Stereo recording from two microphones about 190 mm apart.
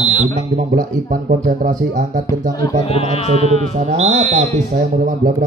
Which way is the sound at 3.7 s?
35° right (ahead or behind).